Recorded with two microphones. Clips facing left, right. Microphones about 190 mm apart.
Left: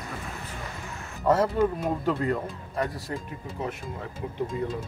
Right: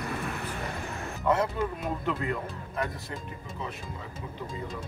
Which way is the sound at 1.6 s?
40° left (ahead or behind).